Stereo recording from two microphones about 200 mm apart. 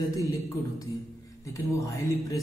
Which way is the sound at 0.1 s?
15° left (ahead or behind).